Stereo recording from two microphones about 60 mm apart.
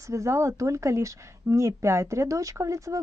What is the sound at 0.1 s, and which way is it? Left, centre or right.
Speech, right.